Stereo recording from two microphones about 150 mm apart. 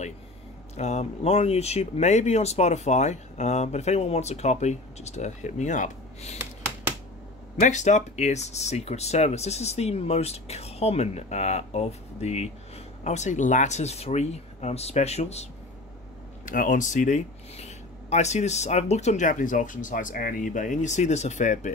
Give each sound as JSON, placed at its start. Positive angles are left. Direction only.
{"t": 0.7, "sound": "speech", "side_deg": 50}
{"t": 7.6, "sound": "speech", "side_deg": 50}
{"t": 16.4, "sound": "speech", "side_deg": 60}